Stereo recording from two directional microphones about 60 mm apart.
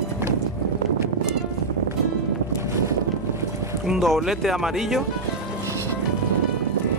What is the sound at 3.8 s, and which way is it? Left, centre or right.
Speech, centre.